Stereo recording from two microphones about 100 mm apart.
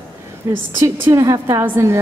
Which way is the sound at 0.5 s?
25° right (ahead or behind).